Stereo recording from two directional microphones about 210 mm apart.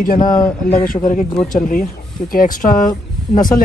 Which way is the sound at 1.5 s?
40° left (ahead or behind).